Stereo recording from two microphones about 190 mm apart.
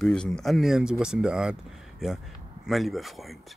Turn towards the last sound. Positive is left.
turn(degrees=0)  # may be behind; listen again after turning